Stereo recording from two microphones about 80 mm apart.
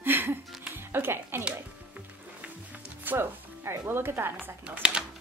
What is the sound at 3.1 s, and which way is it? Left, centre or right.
Music, right.